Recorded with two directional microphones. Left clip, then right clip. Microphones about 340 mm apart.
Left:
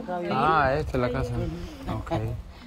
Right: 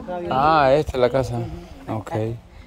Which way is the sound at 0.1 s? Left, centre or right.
Right.